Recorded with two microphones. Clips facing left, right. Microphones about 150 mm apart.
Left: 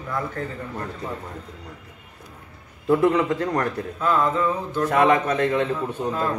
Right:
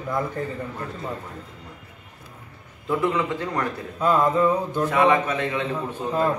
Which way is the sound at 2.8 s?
45° left (ahead or behind).